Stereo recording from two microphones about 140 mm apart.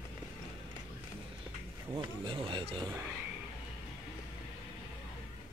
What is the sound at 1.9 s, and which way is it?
Speech, 40° right (ahead or behind).